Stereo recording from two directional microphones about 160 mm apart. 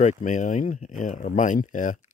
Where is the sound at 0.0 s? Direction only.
50° left (ahead or behind).